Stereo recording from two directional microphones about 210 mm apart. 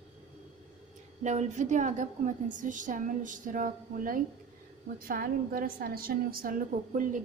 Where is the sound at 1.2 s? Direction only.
35° right (ahead or behind).